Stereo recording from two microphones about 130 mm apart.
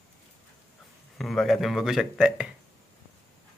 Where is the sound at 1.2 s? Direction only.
Centre (ahead or behind).